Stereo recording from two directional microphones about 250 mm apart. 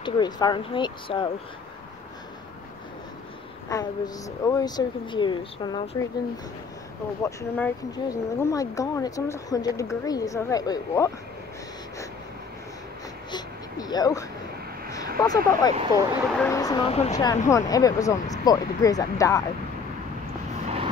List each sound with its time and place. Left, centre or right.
0.0 s speech: centre
3.6 s speech: centre
7.2 s speech: centre
13.3 s a sound: centre
15.1 s speech: centre
20.6 s vehicle: right